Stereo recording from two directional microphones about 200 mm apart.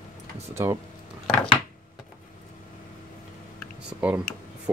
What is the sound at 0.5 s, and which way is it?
Speech, 15° right (ahead or behind).